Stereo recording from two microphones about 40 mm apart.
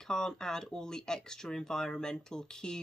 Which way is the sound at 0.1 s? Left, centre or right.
Centre.